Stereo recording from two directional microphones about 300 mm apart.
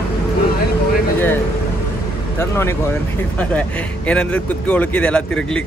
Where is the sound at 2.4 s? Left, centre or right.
Centre.